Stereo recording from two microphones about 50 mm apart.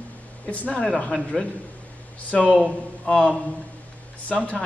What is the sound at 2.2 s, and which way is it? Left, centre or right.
A man's voice, left.